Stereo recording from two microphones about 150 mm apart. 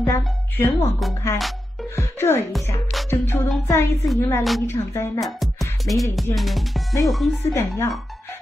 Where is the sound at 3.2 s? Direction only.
20° left (ahead or behind).